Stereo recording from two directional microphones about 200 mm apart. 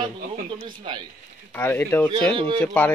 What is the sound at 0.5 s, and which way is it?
Speech, 25° right (ahead or behind).